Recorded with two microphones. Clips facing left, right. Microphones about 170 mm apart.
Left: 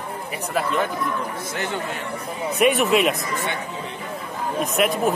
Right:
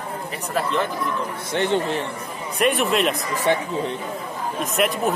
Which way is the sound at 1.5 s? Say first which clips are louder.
Right 10 dB; 30° right (ahead or behind).